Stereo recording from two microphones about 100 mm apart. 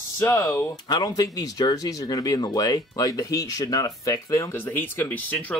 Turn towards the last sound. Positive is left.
turn(degrees=15)  # may be behind; listen again after turning